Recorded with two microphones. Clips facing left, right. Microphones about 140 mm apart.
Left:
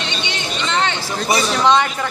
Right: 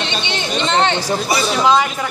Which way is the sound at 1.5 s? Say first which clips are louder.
Right 1 dB; 5° right (ahead or behind).